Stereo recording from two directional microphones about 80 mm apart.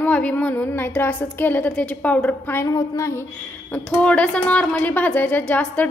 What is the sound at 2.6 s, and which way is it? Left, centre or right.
Child singing, left.